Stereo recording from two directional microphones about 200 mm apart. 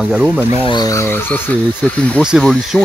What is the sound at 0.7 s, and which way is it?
Speech, 15° left (ahead or behind).